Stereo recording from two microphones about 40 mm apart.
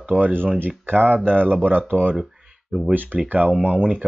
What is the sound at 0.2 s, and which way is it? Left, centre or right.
Speech, right.